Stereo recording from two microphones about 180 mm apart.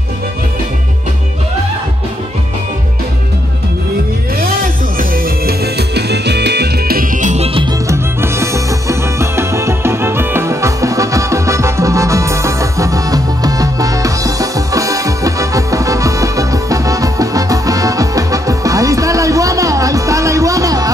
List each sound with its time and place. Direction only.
4.4 s music: 55° right (ahead or behind); by 7.6 s 35° right (ahead or behind)
7.9 s music: 15° right (ahead or behind)